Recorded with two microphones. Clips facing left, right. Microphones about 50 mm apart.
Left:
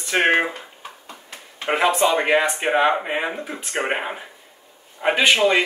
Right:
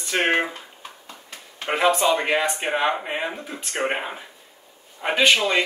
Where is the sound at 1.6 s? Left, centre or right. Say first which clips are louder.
Left 1 dB; left.